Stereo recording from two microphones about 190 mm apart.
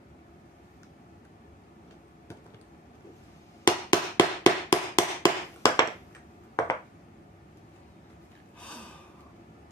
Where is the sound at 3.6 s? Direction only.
25° left (ahead or behind).